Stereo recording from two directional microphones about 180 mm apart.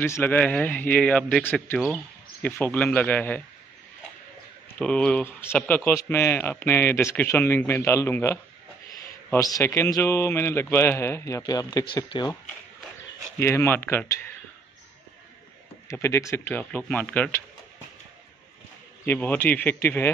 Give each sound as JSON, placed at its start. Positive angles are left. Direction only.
{"t": 0.0, "sound": "speech", "side_deg": 10}
{"t": 4.7, "sound": "speech", "side_deg": 5}
{"t": 13.4, "sound": "speech", "side_deg": 15}
{"t": 15.9, "sound": "speech", "side_deg": 15}
{"t": 19.0, "sound": "speech", "side_deg": 10}